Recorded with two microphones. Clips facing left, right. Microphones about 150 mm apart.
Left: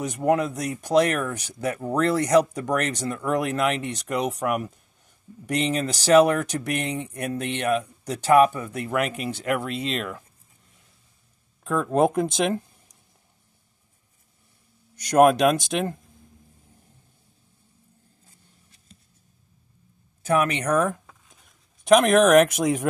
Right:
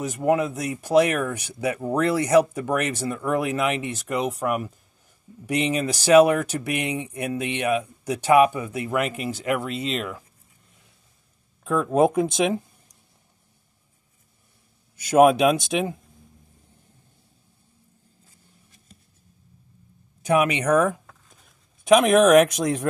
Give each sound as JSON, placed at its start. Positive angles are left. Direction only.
{"t": 0.0, "sound": "speech", "side_deg": 0}
{"t": 11.6, "sound": "speech", "side_deg": 0}
{"t": 15.0, "sound": "speech", "side_deg": -5}
{"t": 20.2, "sound": "speech", "side_deg": -15}